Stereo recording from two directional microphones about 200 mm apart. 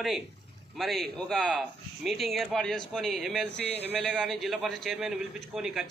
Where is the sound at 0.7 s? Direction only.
Centre (ahead or behind).